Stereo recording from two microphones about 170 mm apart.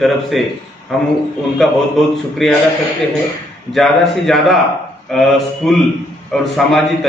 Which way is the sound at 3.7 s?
Centre (ahead or behind).